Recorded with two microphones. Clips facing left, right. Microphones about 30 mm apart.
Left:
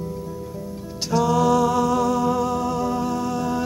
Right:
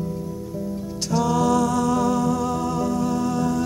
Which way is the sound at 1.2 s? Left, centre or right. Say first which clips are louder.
Left 2 dB; centre.